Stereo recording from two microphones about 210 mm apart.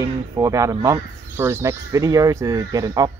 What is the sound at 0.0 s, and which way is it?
Speech, 15° right (ahead or behind).